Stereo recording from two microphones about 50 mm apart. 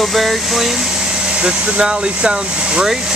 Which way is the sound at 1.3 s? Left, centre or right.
Right.